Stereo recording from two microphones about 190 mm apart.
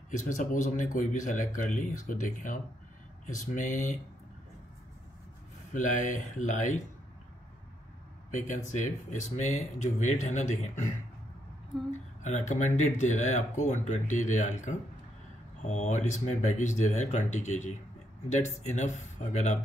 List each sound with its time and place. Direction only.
0.1 s speech: 45° left (ahead or behind)
5.7 s speech: 40° left (ahead or behind)
8.4 s speech: 40° left (ahead or behind)
12.2 s speech: 40° left (ahead or behind)